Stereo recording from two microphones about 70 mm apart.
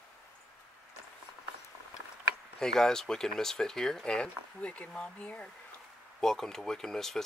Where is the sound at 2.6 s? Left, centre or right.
Centre.